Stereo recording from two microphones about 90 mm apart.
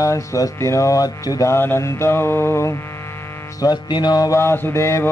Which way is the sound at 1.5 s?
25° left (ahead or behind).